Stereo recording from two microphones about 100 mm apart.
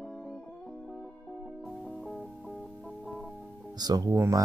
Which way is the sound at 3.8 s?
40° right (ahead or behind).